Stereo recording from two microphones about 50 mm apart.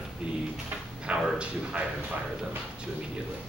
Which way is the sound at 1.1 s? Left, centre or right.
Right.